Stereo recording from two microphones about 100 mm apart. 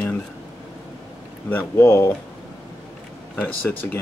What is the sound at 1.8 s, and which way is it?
Speech, 30° left (ahead or behind).